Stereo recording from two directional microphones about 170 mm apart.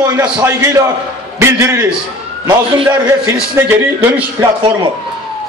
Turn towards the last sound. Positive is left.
turn(degrees=-15)  # may be behind; listen again after turning